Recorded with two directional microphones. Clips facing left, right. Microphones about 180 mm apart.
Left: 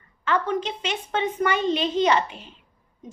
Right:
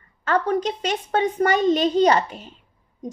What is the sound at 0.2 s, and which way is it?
A woman's voice, 40° right (ahead or behind).